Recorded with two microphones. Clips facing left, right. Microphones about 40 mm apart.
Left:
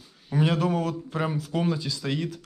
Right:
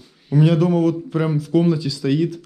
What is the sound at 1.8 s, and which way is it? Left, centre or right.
Speech, right.